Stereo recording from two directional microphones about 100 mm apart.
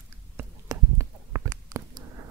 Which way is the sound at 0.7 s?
30° right (ahead or behind).